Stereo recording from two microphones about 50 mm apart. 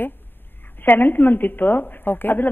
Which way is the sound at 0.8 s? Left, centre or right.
Left.